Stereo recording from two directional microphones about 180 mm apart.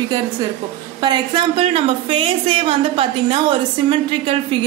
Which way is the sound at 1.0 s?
25° right (ahead or behind).